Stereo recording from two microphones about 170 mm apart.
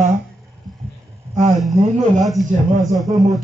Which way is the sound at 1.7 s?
45° right (ahead or behind).